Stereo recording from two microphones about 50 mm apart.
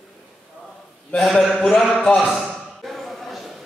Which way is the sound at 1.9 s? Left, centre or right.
Centre.